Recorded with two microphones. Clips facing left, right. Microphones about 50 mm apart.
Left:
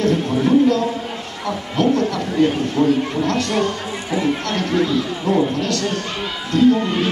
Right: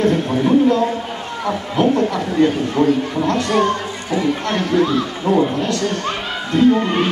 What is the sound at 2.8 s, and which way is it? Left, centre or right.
Speech, right.